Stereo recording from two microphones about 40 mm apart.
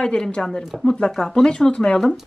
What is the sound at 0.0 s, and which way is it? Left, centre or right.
Speech, left.